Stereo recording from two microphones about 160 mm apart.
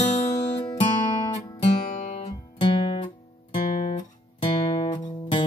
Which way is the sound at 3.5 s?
50° left (ahead or behind).